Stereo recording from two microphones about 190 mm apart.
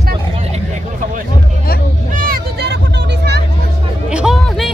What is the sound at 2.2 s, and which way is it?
Music, 55° right (ahead or behind).